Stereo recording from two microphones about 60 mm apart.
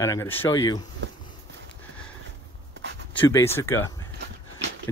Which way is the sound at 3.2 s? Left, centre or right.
Left.